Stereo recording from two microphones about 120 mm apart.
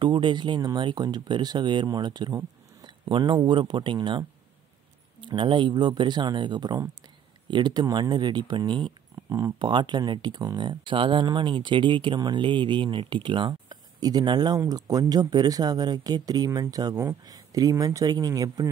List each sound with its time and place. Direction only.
0.0 s speech: 40° right (ahead or behind)
5.2 s speech: 45° right (ahead or behind)
9.1 s speech: 30° right (ahead or behind)